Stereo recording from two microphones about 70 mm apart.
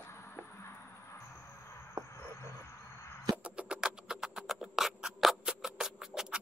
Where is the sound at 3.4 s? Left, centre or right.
Centre.